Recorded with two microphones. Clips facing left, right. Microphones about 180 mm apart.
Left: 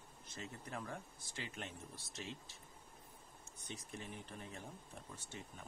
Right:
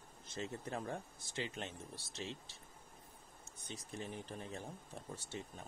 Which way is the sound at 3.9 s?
35° right (ahead or behind).